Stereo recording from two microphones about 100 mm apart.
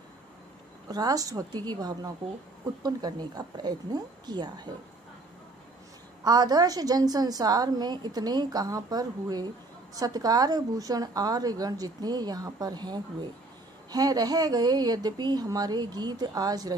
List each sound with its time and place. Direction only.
0.8 s a woman's voice: 40° right (ahead or behind)
6.2 s a woman's voice: 40° right (ahead or behind)